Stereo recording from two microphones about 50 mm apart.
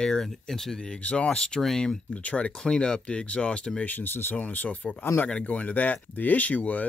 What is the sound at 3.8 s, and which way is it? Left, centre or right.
Speech, left.